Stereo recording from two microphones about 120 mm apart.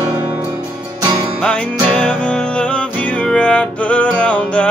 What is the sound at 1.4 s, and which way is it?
Music, 10° left (ahead or behind).